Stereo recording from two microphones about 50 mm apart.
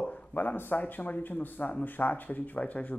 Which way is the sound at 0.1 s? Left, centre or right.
Left.